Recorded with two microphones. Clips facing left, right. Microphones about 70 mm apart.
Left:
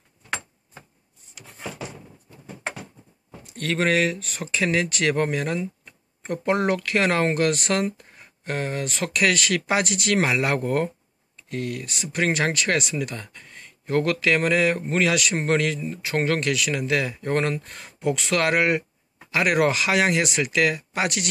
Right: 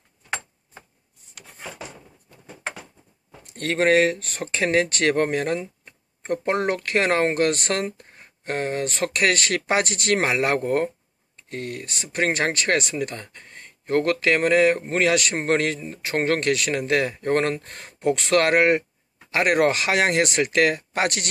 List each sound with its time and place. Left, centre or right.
3.4 s speech: right